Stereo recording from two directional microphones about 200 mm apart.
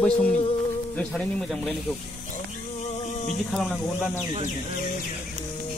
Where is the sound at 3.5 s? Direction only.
Centre (ahead or behind).